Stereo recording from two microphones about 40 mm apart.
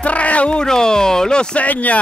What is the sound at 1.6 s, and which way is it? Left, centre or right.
Speech, left.